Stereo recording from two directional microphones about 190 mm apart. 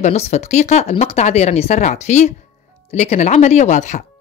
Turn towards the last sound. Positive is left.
turn(degrees=40)  # may be behind; listen again after turning